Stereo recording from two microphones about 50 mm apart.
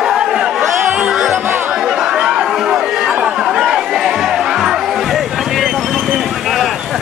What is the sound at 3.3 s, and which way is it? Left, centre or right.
Music, centre.